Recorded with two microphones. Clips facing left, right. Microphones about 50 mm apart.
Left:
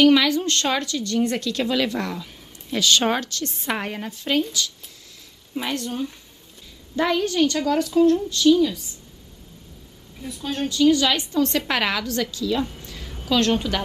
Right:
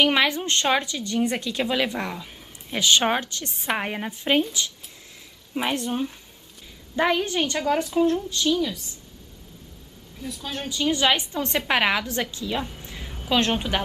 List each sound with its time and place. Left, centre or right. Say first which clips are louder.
0.0 s a woman's voice: left 4 dB; right
8.5 s a woman's voice: left 7 dB; centre
10.2 s a woman's voice: left 5 dB; centre
10.7 s a woman's voice: left 3 dB; right
12.8 s a sound: even; right
13.3 s a woman's voice: left 2 dB; right